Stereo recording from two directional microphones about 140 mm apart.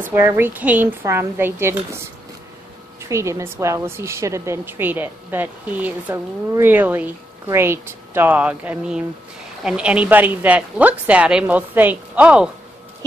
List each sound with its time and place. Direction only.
0.0 s a woman's voice: 15° right (ahead or behind)
3.1 s a woman's voice: 20° right (ahead or behind)